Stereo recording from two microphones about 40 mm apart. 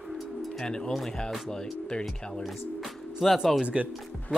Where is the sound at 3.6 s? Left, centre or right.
Right.